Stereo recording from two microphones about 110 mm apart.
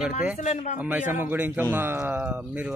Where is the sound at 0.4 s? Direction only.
90° left.